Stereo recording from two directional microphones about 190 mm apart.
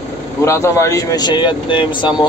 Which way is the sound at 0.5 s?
15° left (ahead or behind).